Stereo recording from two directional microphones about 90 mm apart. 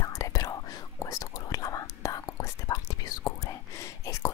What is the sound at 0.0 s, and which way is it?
Whispering, 35° left (ahead or behind).